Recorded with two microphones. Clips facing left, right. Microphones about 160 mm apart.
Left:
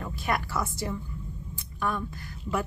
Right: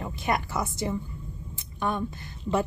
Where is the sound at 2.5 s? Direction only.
25° right (ahead or behind).